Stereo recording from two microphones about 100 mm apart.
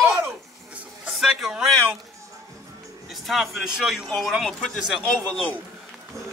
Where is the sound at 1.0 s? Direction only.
5° right (ahead or behind).